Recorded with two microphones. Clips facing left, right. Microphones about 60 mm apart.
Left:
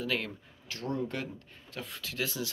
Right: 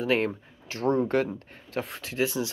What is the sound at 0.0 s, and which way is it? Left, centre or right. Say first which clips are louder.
Speech: right 8 dB; right.